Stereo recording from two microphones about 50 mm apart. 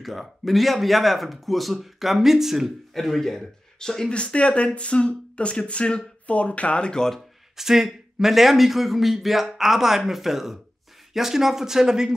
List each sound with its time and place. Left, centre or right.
0.0 s a man's voice: centre
2.9 s a man's voice: centre
4.1 s speech: left
7.5 s a man's voice: centre